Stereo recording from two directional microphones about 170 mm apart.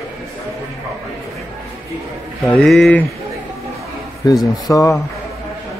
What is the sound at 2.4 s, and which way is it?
Speech, centre (ahead or behind).